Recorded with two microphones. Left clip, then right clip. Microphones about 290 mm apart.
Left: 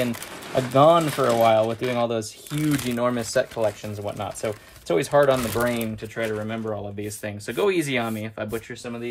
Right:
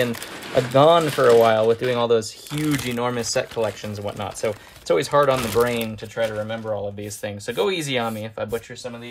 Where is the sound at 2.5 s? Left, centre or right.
Centre.